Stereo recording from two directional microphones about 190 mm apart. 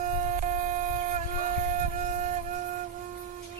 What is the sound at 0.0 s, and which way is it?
Shofar, 40° right (ahead or behind).